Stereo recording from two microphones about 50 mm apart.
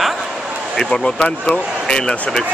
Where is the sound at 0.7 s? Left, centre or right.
Centre.